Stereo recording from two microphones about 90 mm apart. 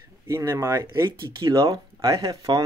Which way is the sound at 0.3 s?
30° right (ahead or behind).